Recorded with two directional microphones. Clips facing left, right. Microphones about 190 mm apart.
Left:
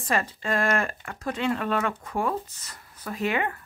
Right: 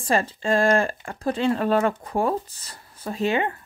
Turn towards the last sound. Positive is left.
turn(degrees=-25)  # may be behind; listen again after turning